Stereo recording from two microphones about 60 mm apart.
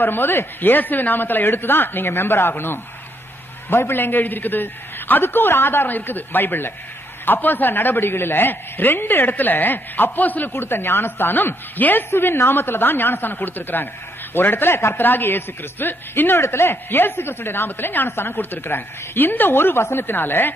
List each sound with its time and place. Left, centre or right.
0.0 s a man's voice: left
12.1 s a man's voice: left
15.0 s a man's voice: left